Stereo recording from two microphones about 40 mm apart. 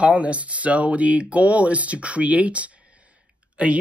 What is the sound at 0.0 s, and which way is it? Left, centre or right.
Speech, right.